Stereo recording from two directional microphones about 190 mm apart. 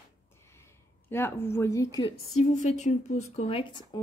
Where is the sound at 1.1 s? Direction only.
10° left (ahead or behind).